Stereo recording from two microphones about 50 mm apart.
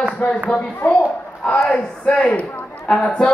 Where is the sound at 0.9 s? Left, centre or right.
Left.